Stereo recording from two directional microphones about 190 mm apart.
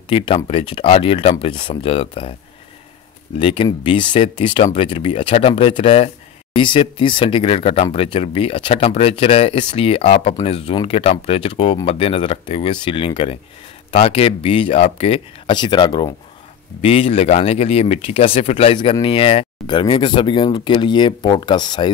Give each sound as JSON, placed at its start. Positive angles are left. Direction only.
{"t": 0.1, "sound": "speech", "side_deg": 25}
{"t": 3.3, "sound": "speech", "side_deg": 25}